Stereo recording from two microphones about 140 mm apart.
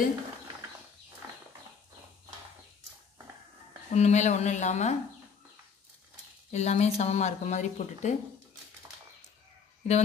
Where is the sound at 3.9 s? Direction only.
55° left (ahead or behind).